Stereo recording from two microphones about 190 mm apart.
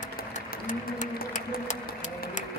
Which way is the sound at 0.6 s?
45° left (ahead or behind).